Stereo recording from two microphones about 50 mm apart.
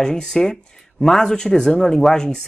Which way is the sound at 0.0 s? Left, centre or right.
Centre.